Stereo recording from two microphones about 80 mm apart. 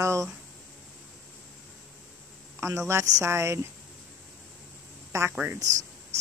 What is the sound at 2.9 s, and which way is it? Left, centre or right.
Speech, right.